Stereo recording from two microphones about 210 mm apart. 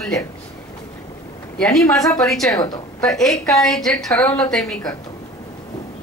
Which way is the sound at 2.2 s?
Centre (ahead or behind).